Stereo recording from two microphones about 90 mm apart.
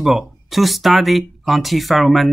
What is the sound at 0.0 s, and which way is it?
Speech, 5° right (ahead or behind).